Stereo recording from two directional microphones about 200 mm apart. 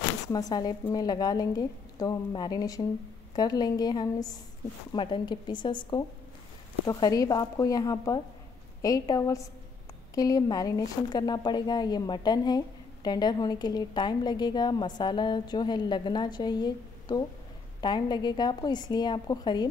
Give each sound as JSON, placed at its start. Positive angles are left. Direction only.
{"t": 0.3, "sound": "speech", "side_deg": 20}